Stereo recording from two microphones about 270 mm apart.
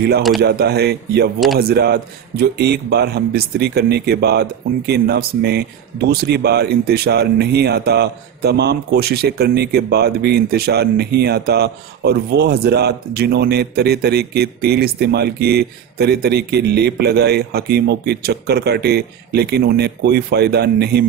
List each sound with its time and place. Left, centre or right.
0.4 s a man's voice: right